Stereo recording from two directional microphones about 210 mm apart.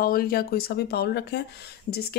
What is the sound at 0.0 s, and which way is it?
Speech, 45° left (ahead or behind).